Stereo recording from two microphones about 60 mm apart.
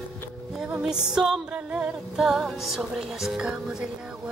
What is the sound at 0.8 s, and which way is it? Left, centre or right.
Music, centre.